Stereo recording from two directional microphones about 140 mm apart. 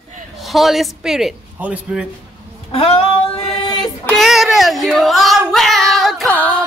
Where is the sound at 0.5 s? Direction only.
Centre (ahead or behind).